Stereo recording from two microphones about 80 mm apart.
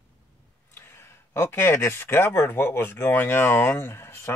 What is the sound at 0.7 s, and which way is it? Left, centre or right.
Speech, left.